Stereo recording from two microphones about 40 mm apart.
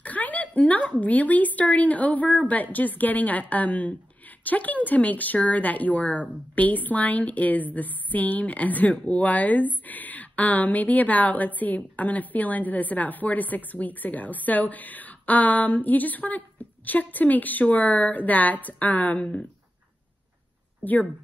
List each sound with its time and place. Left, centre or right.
0.0 s a sound: left
1.0 s a woman's voice: left
20.8 s a woman's voice: left